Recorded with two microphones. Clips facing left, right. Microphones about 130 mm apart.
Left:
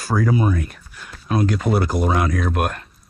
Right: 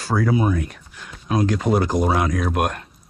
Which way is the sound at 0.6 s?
5° left (ahead or behind).